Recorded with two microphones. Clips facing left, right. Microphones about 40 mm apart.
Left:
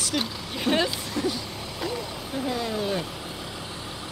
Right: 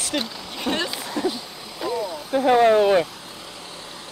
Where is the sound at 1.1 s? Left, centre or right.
Centre.